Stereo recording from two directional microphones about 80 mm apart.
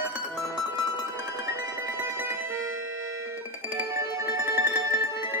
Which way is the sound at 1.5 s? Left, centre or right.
Right.